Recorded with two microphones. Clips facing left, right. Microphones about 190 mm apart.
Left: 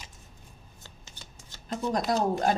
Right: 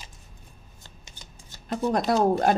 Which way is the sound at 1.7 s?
65° right (ahead or behind).